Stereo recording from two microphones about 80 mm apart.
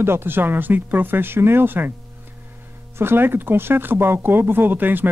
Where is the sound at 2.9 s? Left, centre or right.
Right.